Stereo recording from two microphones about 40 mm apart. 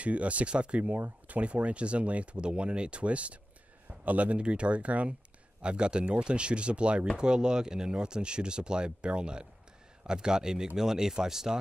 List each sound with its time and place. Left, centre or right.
0.0 s speech: right; by 11.5 s centre